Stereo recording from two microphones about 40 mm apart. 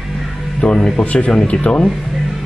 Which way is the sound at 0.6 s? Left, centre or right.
Left.